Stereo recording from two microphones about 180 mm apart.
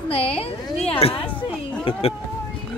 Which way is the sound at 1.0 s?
30° left (ahead or behind).